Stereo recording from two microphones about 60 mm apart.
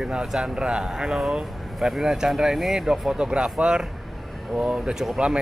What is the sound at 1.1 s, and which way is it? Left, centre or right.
Speech, centre.